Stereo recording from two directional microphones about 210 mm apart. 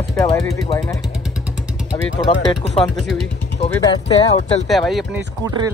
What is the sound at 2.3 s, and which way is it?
Speech, 25° left (ahead or behind).